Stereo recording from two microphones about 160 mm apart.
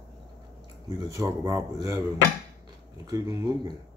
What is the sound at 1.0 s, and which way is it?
Speech, 20° right (ahead or behind).